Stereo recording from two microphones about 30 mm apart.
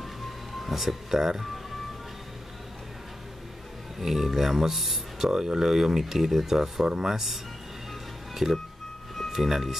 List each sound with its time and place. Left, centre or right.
0.6 s speech: centre
4.0 s speech: centre
5.3 s speech: centre
8.4 s speech: centre